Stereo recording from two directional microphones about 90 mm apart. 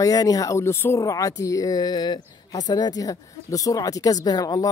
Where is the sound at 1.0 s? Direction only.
40° left (ahead or behind).